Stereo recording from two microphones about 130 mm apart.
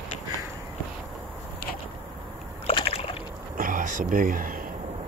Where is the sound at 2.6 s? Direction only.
50° left (ahead or behind).